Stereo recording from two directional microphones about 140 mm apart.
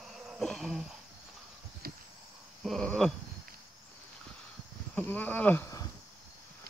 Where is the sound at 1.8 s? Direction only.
90° right.